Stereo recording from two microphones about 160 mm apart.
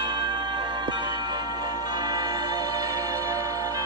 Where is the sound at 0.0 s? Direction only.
30° right (ahead or behind).